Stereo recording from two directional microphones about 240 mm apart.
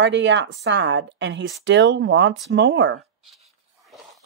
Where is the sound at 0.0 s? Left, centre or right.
Right.